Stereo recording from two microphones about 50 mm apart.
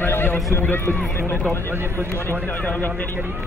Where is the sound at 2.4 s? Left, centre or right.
Left.